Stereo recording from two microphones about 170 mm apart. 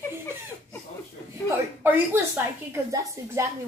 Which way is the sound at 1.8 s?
10° right (ahead or behind).